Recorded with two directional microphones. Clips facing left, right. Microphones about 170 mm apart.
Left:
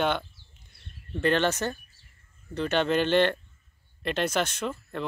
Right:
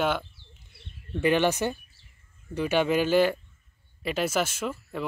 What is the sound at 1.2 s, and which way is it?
Speech, 10° right (ahead or behind).